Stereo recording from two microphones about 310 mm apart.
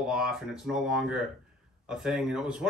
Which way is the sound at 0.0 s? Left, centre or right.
Centre.